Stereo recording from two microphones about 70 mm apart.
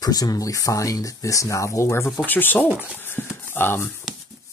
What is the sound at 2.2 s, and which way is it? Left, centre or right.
Speech, left.